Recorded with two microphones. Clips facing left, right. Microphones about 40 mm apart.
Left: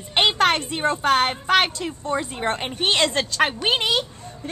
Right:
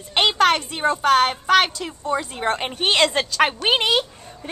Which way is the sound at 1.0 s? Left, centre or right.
Centre.